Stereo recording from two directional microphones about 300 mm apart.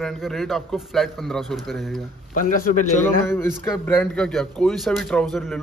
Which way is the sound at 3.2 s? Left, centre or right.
Centre.